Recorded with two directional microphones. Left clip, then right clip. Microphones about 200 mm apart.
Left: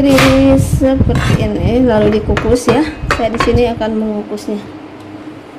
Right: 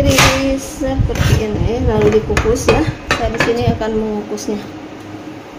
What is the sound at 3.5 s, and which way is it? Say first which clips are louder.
Speech: left 5 dB; 30° left (ahead or behind).